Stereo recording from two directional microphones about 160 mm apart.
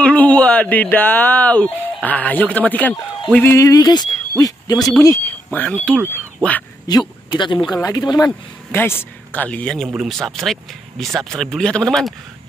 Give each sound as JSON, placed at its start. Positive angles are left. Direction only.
{"t": 0.0, "sound": "speech", "side_deg": 10}
{"t": 5.6, "sound": "speech", "side_deg": 10}
{"t": 6.9, "sound": "speech", "side_deg": 25}
{"t": 8.7, "sound": "speech", "side_deg": 15}